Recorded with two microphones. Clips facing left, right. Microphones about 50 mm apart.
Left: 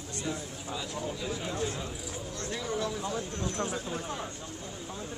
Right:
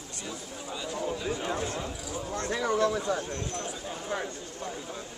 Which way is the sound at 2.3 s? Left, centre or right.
Right.